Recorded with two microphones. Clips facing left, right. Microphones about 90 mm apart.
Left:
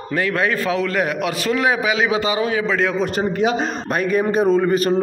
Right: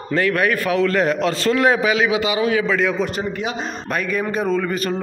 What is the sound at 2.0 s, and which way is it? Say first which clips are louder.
A man's voice: even; 35° left (ahead or behind).